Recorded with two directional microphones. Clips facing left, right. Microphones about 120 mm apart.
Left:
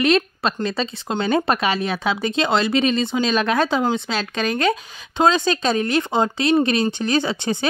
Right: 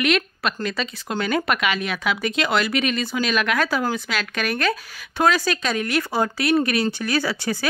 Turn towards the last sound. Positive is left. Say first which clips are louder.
# left 3 dB
turn(degrees=25)  # may be behind; listen again after turning